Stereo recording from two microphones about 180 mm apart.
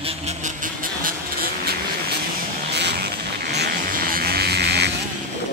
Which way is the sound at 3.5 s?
60° right (ahead or behind).